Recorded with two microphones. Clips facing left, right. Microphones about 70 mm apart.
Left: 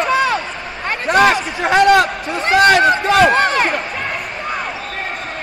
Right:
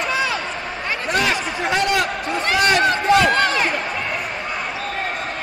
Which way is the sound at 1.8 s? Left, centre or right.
Left.